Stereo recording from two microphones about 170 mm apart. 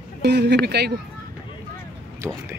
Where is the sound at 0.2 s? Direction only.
80° right.